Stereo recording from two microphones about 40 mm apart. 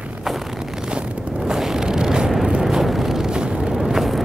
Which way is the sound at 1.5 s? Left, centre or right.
Centre.